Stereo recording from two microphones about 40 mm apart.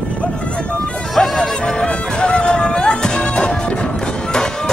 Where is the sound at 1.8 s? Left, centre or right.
Left.